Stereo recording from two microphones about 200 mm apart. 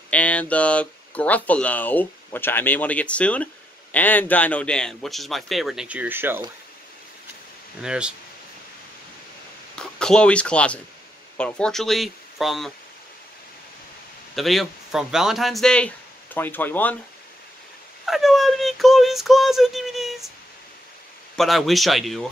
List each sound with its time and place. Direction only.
0.1 s speech: 5° left (ahead or behind); by 6.4 s 10° right (ahead or behind)
7.8 s speech: 5° right (ahead or behind)
9.8 s speech: 5° left (ahead or behind)
14.3 s speech: centre (ahead or behind)
18.0 s a sound: centre (ahead or behind)
21.4 s speech: centre (ahead or behind)